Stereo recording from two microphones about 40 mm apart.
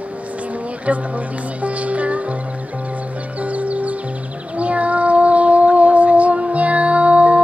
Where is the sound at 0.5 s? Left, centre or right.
Right.